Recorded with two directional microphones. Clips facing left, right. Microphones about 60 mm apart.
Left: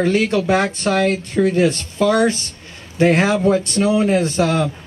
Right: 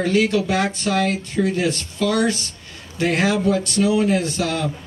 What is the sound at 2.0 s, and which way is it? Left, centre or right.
Speech, left.